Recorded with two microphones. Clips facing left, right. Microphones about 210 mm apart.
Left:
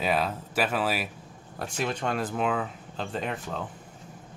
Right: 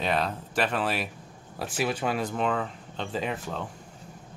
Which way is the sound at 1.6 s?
5° right (ahead or behind).